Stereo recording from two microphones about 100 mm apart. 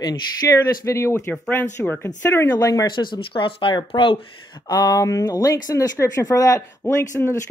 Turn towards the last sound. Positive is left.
turn(degrees=25)  # may be behind; listen again after turning